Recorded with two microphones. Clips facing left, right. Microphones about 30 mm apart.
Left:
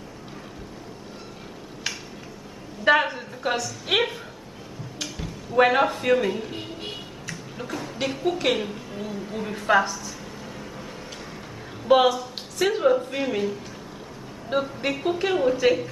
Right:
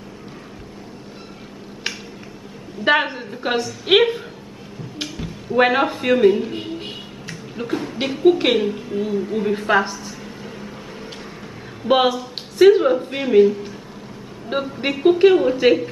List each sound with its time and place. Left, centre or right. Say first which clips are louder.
1.9 s a sound: right 3 dB; right
2.8 s a woman's voice: right 2 dB; right
5.2 s a man's voice: right 3 dB; right
7.2 s a sound: right 8 dB; right
8.2 s a woman's voice: right 9 dB; right
8.5 s a woman's voice: right 9 dB; centre; by 10.1 s right
10.2 s vehicle: right 3 dB; centre
11.8 s a woman's voice: right 1 dB; right